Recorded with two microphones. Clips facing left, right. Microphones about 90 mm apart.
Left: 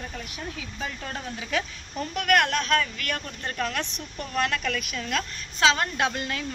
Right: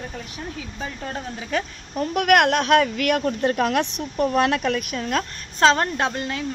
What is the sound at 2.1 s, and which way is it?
Speech, 60° right (ahead or behind).